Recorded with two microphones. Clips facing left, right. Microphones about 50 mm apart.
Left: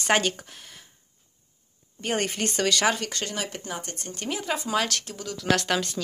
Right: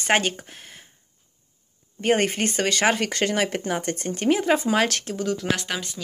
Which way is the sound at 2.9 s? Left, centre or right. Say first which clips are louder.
Right 5 dB; right.